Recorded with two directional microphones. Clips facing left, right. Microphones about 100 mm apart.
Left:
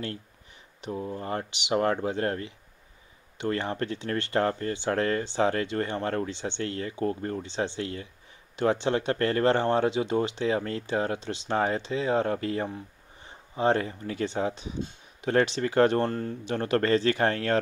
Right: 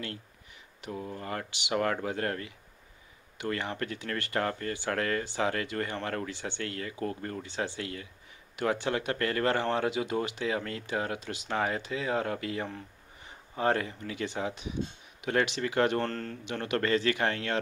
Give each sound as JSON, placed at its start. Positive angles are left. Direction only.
{"t": 0.7, "sound": "speech", "side_deg": 25}
{"t": 16.0, "sound": "speech", "side_deg": 15}
{"t": 16.4, "sound": "speech", "side_deg": 35}